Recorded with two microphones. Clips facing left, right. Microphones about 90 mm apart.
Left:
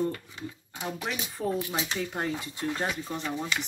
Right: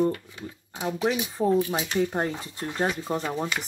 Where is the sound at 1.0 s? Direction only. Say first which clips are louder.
Right 9 dB; 25° right (ahead or behind).